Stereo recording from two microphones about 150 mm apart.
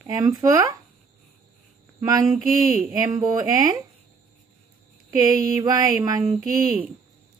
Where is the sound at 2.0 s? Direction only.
25° right (ahead or behind).